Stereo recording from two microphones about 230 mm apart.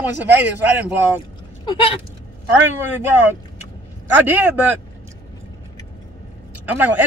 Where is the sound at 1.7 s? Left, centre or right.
Left.